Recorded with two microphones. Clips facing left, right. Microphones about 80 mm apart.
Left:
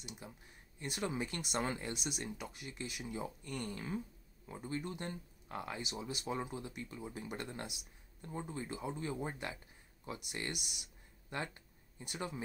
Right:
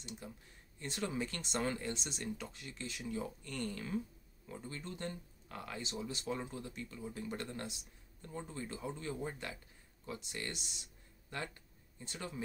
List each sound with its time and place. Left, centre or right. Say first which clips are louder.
0.7 s speech: even; centre